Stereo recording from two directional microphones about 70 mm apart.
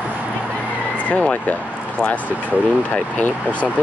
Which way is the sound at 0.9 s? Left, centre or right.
Left.